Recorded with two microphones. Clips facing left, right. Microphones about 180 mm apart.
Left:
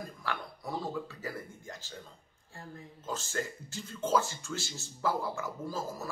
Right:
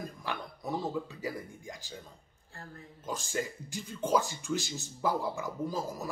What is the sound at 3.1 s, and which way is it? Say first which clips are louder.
Speech: right 1 dB; 15° right (ahead or behind).